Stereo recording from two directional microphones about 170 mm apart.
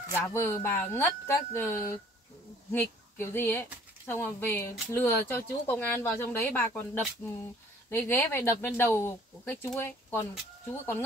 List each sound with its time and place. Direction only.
0.1 s a woman's voice: 15° left (ahead or behind)